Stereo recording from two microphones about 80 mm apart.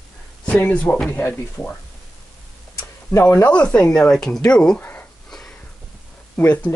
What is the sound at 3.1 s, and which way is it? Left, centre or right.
Speech, left.